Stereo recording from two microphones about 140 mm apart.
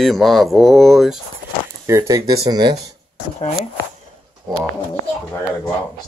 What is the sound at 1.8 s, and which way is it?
Speech, 25° right (ahead or behind).